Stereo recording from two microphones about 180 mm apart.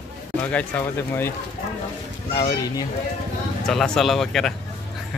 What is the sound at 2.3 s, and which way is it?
Speech, 30° left (ahead or behind).